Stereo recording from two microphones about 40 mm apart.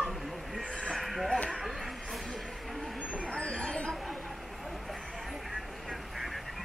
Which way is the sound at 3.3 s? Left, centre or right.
Left.